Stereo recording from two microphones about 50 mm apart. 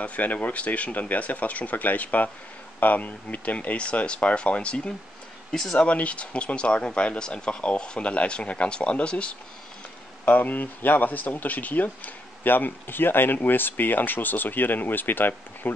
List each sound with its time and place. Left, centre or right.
0.0 s speech: left; by 5.8 s centre
5.8 s speech: left
10.2 s speech: left